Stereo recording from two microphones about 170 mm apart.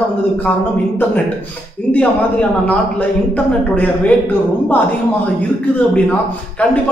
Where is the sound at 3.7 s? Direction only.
10° left (ahead or behind).